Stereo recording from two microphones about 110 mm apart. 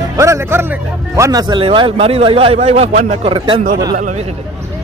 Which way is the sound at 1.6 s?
55° right (ahead or behind).